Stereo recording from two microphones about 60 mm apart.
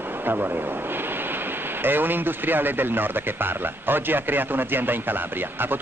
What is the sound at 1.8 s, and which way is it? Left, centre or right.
Speech, right.